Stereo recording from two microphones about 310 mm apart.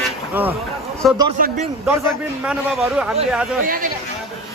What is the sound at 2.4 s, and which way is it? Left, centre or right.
Speech, centre.